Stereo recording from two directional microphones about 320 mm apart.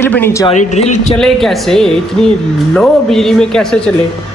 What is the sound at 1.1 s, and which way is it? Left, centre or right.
A woman's voice, centre.